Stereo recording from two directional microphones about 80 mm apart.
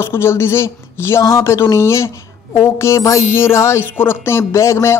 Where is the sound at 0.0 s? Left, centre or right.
Left.